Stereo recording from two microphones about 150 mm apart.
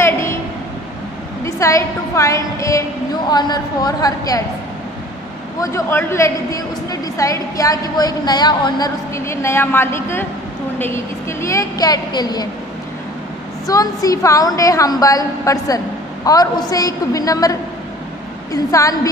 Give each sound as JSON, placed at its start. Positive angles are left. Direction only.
{"t": 0.0, "sound": "a sound", "side_deg": 20}
{"t": 1.4, "sound": "a woman's voice", "side_deg": 20}
{"t": 5.6, "sound": "a woman's voice", "side_deg": 15}
{"t": 13.7, "sound": "a woman's voice", "side_deg": 25}